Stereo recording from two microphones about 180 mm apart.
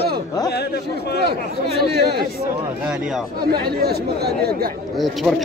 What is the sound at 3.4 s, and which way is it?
Speech, 60° right (ahead or behind).